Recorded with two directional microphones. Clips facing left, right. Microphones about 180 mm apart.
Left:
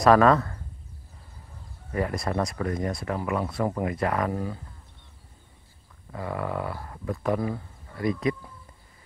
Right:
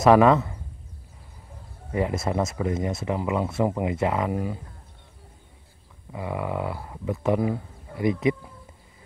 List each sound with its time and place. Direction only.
0.0 s speech: 20° right (ahead or behind)
1.9 s speech: 20° right (ahead or behind)
6.1 s speech: 15° right (ahead or behind)